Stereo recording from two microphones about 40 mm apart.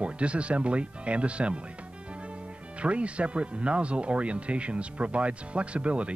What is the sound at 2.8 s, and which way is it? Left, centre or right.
Speech, right.